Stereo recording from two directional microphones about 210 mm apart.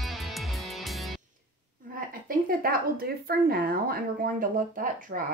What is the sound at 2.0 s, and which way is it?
A woman's voice, 45° right (ahead or behind).